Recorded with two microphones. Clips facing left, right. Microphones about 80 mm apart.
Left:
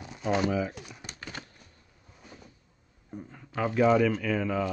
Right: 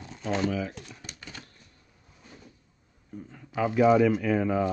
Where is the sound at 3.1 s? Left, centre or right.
Left.